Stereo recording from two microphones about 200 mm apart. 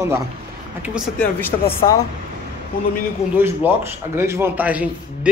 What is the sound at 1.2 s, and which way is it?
Speech, 10° left (ahead or behind).